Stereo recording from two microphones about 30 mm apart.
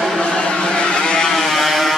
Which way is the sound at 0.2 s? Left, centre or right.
Left.